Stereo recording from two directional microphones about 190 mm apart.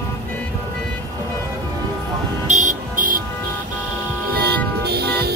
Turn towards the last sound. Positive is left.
turn(degrees=-60)  # may be behind; listen again after turning